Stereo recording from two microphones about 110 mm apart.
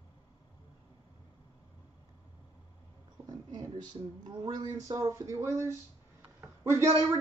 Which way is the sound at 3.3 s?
35° right (ahead or behind).